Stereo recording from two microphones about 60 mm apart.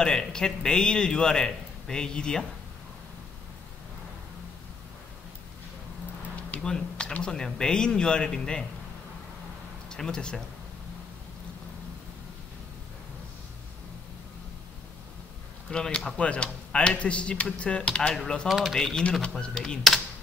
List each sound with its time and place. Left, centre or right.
0.0 s a man's voice: centre
6.3 s a sound: left
6.7 s a man's voice: centre
9.8 s speech: centre
15.7 s a man's voice: centre
16.2 s a man's voice: centre
18.5 s speech: centre
18.8 s a man's voice: centre